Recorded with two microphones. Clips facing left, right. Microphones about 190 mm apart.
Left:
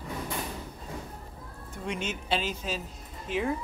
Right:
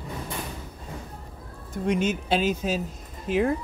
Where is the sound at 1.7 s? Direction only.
45° right (ahead or behind).